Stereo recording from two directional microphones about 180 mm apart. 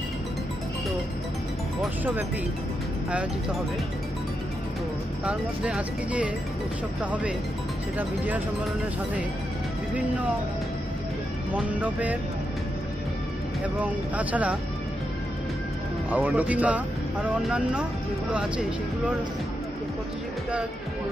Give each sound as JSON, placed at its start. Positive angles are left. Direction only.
{"t": 5.2, "sound": "speech", "side_deg": -5}
{"t": 11.8, "sound": "speech", "side_deg": -10}
{"t": 14.1, "sound": "speech", "side_deg": -10}
{"t": 16.1, "sound": "speech", "side_deg": -10}